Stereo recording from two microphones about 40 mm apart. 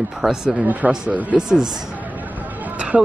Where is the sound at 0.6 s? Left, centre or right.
Right.